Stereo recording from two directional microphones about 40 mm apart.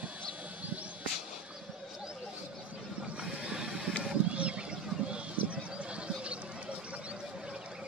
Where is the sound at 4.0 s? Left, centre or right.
Right.